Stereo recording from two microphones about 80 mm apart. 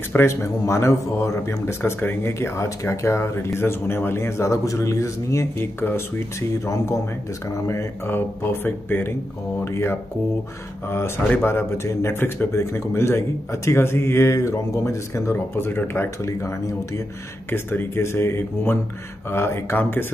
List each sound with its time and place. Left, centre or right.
0.1 s speech: left
5.6 s speech: left
11.4 s speech: left
17.5 s speech: left